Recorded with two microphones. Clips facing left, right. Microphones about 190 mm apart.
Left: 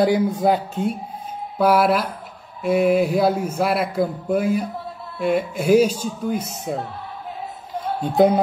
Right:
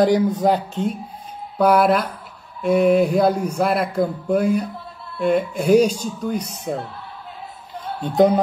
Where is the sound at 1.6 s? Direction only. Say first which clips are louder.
Right 1 dB; 5° left (ahead or behind).